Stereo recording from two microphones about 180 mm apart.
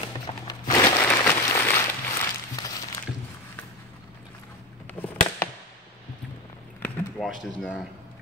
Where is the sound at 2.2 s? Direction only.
20° left (ahead or behind).